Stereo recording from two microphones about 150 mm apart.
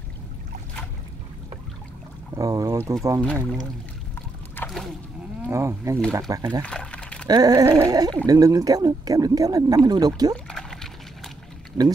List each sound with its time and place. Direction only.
2.3 s speech: 25° right (ahead or behind)
3.2 s speech: 10° left (ahead or behind)
4.6 s splash: 10° left (ahead or behind)
5.5 s speech: 20° right (ahead or behind)
6.6 s a sound: 5° left (ahead or behind)
7.2 s speech: 25° right (ahead or behind)
10.3 s pour: 5° left (ahead or behind)